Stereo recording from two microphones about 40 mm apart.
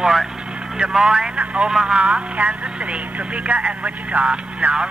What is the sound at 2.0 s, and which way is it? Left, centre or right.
Speech, right.